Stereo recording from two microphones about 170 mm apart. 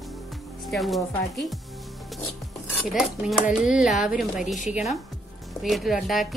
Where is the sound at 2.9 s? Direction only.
5° right (ahead or behind).